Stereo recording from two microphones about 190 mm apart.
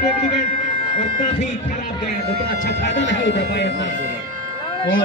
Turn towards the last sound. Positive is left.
turn(degrees=75)  # may be behind; listen again after turning